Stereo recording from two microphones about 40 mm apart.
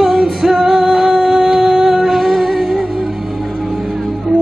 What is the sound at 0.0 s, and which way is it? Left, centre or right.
Music, centre.